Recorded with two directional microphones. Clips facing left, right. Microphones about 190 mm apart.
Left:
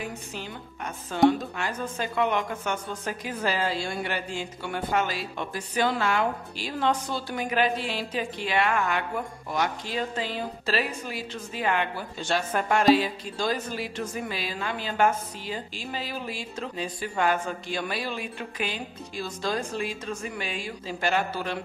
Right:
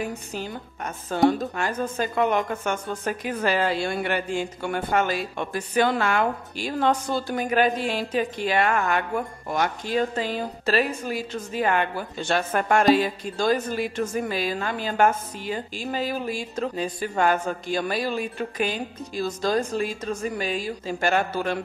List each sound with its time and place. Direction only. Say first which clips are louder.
0.0 s a woman's voice: right 5 dB; 45° right (ahead or behind)